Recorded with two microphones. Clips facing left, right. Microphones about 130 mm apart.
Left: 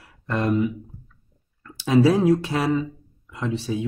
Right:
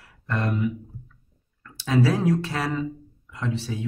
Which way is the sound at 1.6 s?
20° left (ahead or behind).